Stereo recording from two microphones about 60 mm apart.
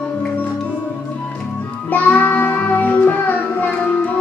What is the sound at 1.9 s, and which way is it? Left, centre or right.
Child singing, left.